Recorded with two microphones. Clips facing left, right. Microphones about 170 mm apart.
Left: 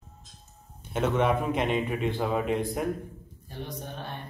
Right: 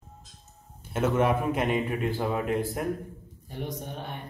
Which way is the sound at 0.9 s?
5° right (ahead or behind).